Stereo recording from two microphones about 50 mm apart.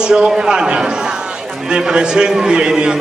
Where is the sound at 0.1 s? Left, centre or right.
Centre.